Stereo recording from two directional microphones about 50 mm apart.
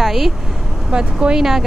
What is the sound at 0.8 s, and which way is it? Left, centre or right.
Speech, centre.